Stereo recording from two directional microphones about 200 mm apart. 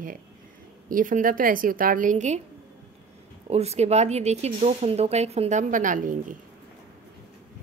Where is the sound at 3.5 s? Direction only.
30° right (ahead or behind).